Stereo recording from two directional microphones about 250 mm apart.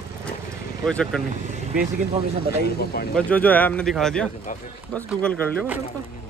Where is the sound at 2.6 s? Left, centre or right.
Left.